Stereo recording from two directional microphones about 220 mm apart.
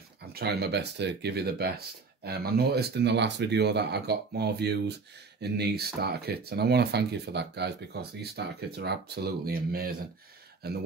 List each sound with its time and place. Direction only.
0.3 s speech: 45° right (ahead or behind)